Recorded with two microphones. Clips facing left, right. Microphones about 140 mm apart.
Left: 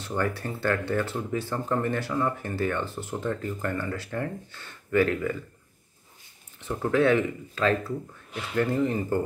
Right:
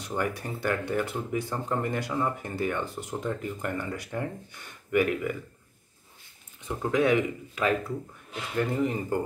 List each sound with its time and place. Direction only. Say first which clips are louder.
0.0 s speech: left 2 dB; 15° right (ahead or behind)
6.6 s speech: left 2 dB; 15° right (ahead or behind)